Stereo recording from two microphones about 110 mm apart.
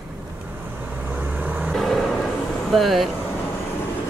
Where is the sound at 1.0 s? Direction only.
15° right (ahead or behind).